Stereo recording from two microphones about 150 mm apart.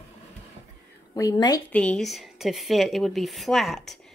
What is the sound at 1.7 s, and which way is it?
A woman's voice, 10° left (ahead or behind).